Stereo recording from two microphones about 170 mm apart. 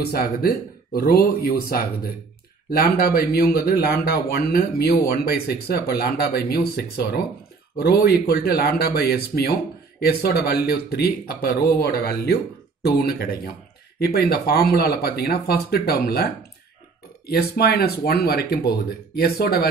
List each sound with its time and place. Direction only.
0.0 s speech: 65° left (ahead or behind)
17.3 s speech: 65° left (ahead or behind)